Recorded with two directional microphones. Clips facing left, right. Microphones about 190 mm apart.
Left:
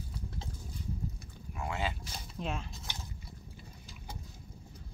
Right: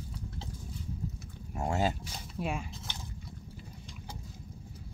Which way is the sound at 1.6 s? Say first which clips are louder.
Right 6 dB; 40° right (ahead or behind).